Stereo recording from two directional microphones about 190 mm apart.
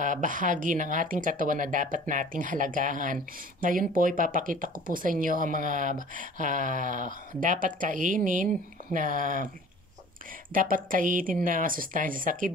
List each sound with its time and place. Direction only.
0.0 s speech: 45° right (ahead or behind)
10.5 s speech: 45° right (ahead or behind)